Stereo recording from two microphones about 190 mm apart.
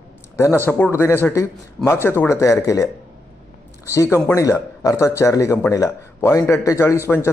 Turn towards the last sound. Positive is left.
turn(degrees=15)  # may be behind; listen again after turning